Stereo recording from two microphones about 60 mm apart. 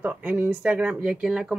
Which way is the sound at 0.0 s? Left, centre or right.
Right.